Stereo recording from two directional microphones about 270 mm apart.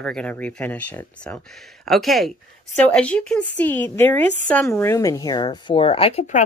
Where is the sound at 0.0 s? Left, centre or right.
Centre.